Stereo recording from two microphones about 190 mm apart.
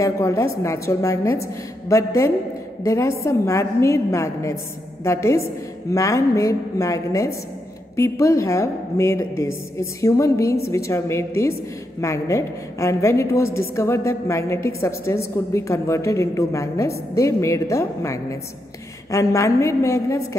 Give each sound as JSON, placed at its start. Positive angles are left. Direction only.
{"t": 0.0, "sound": "a woman's voice", "side_deg": 15}